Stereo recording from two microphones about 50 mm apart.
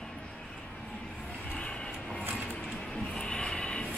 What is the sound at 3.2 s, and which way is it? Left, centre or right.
Vehicle, centre.